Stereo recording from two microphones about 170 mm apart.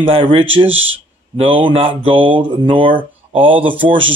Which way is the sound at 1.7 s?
35° right (ahead or behind).